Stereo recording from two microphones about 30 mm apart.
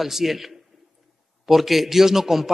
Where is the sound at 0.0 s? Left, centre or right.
Centre.